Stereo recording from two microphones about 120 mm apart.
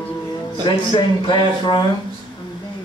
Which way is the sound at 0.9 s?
40° left (ahead or behind).